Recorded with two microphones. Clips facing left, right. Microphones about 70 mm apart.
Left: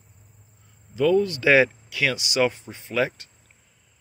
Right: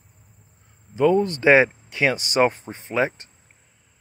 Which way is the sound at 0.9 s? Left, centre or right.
Right.